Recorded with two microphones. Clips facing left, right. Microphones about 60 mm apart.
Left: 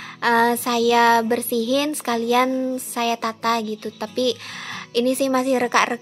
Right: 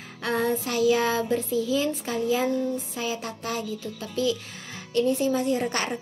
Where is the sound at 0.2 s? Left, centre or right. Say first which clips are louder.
Left 8 dB; left.